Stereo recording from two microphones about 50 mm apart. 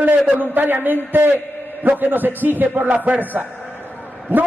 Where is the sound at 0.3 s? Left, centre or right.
Right.